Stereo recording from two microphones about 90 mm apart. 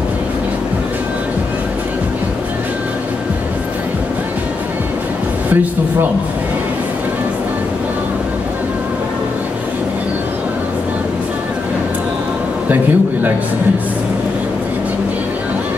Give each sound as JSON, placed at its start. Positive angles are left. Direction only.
{"t": 12.6, "sound": "a man's voice", "side_deg": -20}